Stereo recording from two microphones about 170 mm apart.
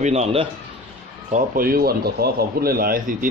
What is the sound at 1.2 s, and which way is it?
Speech, 50° right (ahead or behind).